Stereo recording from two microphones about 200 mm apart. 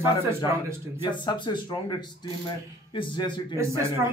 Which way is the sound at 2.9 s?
25° left (ahead or behind).